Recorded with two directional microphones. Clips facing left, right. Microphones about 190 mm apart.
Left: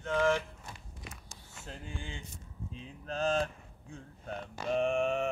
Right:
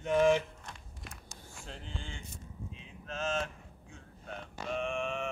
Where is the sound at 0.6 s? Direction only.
Centre (ahead or behind).